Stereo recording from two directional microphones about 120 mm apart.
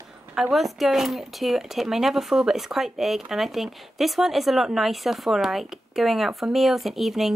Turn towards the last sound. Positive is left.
turn(degrees=0)  # may be behind; listen again after turning